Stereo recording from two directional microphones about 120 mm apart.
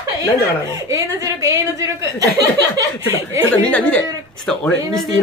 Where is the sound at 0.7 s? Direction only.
25° right (ahead or behind).